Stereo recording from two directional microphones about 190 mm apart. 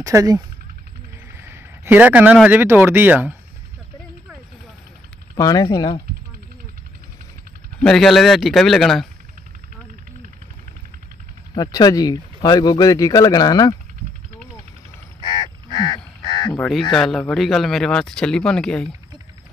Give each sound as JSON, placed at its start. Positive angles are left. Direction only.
{"t": 0.0, "sound": "speech", "side_deg": -20}
{"t": 1.3, "sound": "a sound", "side_deg": -10}
{"t": 2.3, "sound": "speech", "side_deg": -5}
{"t": 5.3, "sound": "speech", "side_deg": 20}
{"t": 7.8, "sound": "speech", "side_deg": 0}
{"t": 11.5, "sound": "speech", "side_deg": 20}
{"t": 15.1, "sound": "a sound", "side_deg": 25}
{"t": 16.2, "sound": "duck", "side_deg": 25}
{"t": 16.5, "sound": "speech", "side_deg": 0}